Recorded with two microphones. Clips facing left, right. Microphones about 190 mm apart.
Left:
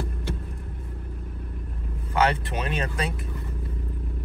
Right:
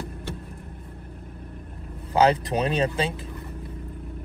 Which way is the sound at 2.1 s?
35° right (ahead or behind).